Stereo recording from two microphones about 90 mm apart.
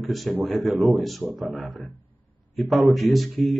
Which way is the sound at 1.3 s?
15° right (ahead or behind).